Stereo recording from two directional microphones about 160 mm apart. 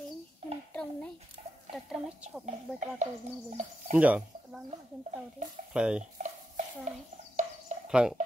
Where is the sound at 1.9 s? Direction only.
5° right (ahead or behind).